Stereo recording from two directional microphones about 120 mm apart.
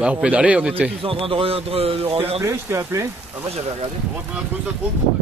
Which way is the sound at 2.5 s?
20° right (ahead or behind).